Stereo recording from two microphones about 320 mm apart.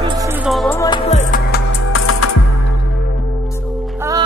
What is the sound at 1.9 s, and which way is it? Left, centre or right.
Music, left.